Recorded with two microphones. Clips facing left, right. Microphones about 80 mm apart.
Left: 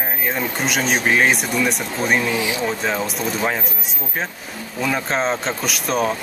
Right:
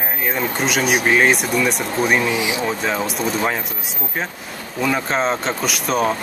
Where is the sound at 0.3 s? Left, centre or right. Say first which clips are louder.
Right 2 dB; centre.